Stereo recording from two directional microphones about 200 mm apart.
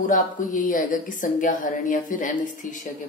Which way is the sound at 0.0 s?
40° left (ahead or behind).